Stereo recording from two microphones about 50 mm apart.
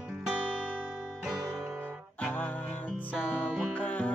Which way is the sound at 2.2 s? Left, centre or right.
Left.